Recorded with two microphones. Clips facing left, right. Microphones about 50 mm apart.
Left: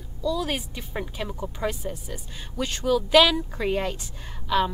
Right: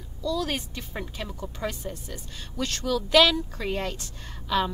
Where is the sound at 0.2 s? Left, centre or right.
Centre.